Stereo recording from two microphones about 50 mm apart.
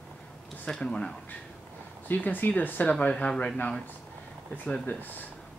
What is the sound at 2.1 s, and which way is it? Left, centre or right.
Speech, left.